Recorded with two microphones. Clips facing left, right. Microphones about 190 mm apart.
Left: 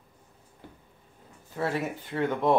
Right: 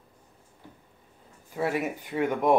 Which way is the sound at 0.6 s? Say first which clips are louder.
Left 1 dB; 60° left (ahead or behind).